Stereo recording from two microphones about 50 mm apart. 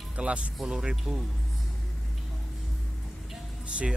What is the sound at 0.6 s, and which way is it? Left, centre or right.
Speech, centre.